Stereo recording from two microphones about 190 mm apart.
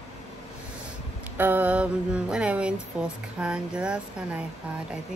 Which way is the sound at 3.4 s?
5° right (ahead or behind).